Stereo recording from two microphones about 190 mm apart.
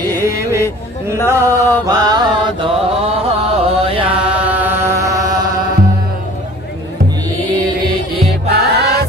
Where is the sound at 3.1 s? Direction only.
30° right (ahead or behind).